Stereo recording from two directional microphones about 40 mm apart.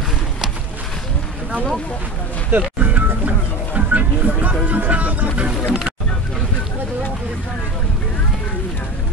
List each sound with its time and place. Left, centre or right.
2.5 s speech: right
3.3 s music: right
5.7 s speech: centre